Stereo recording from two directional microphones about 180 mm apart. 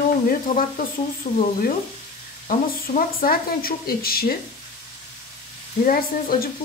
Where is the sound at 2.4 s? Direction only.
50° left (ahead or behind).